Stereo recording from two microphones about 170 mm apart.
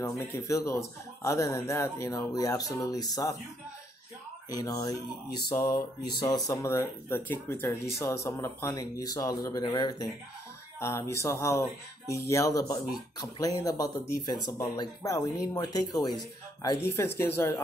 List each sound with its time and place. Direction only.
0.0 s speech: 15° left (ahead or behind)
4.5 s speech: 20° left (ahead or behind)
6.1 s speech: 20° left (ahead or behind)